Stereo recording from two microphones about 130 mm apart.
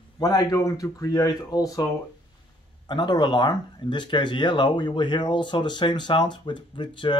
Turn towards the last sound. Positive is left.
turn(degrees=35)  # may be behind; listen again after turning